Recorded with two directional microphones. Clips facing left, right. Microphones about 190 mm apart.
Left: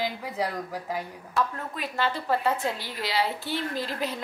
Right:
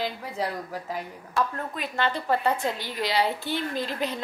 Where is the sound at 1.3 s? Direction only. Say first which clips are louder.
Right 1 dB; 5° left (ahead or behind).